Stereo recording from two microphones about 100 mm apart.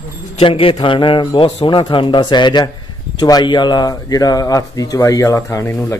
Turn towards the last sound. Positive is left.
turn(degrees=25)  # may be behind; listen again after turning